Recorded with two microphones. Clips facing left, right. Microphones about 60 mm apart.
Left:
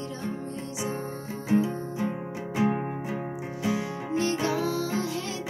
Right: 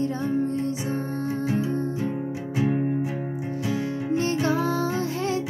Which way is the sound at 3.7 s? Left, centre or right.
Right.